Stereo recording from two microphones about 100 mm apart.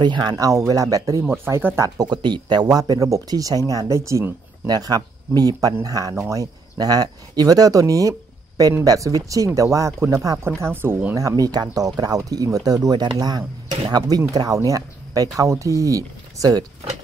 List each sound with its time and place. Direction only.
0.0 s speech: 50° right (ahead or behind)
1.2 s speech: 20° right (ahead or behind)
1.8 s speech: 45° right (ahead or behind)
4.6 s speech: 40° right (ahead or behind)
10.6 s speech: 20° right (ahead or behind)
11.1 s speech: 35° right (ahead or behind)